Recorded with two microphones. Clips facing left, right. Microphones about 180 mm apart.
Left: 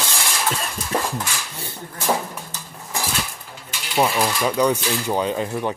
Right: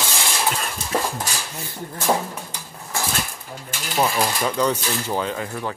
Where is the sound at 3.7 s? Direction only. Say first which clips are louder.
Right 2 dB; 45° right (ahead or behind).